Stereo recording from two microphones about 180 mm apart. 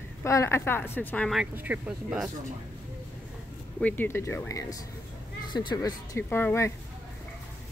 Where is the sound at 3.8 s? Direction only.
10° left (ahead or behind).